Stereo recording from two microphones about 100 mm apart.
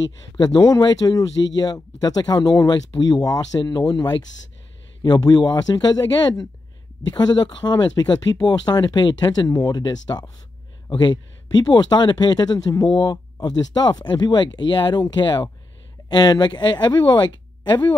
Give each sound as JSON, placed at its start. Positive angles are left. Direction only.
{"t": 0.4, "sound": "speech", "side_deg": 40}